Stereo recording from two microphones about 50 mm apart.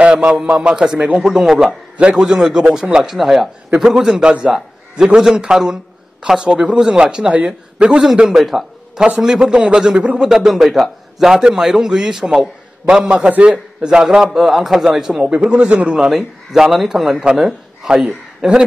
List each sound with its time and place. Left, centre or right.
0.0 s a man's voice: centre
2.0 s a man's voice: right
2.2 s a man's voice: centre
8.2 s a man's voice: centre
10.5 s a man's voice: centre
13.5 s a man's voice: centre
15.2 s a man's voice: right
16.1 s a man's voice: centre